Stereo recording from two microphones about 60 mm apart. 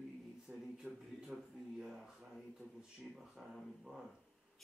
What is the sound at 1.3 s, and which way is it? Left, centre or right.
Speech, centre.